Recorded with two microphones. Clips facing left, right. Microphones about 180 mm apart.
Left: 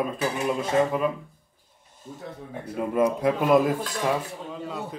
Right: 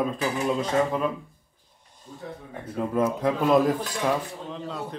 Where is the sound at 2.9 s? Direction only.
10° left (ahead or behind).